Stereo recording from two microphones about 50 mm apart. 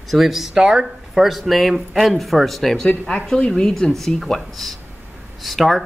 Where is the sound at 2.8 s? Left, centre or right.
Centre.